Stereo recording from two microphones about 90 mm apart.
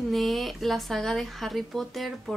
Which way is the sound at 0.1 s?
Centre (ahead or behind).